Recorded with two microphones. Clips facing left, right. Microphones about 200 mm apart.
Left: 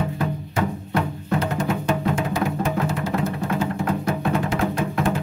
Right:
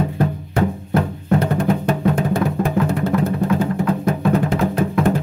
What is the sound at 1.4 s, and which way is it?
Music, 60° right (ahead or behind).